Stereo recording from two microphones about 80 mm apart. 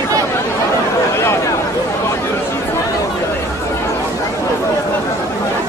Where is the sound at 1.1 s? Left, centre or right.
Left.